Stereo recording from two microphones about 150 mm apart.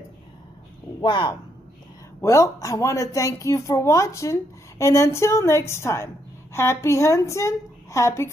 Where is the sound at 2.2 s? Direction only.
20° left (ahead or behind).